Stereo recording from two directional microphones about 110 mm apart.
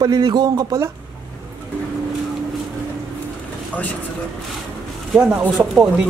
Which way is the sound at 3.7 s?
15° left (ahead or behind).